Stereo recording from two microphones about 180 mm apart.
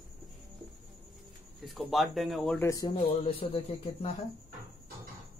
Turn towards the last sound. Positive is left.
turn(degrees=30)  # may be behind; listen again after turning